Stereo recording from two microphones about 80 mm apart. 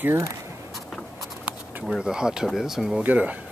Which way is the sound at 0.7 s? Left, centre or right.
Centre.